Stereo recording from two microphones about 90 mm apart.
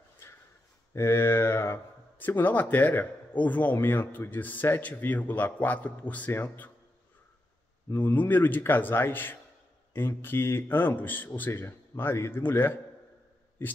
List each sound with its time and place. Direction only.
0.9 s speech: 30° left (ahead or behind)
7.9 s speech: 25° left (ahead or behind)